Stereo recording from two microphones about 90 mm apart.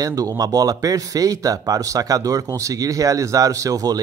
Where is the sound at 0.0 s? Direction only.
40° right (ahead or behind).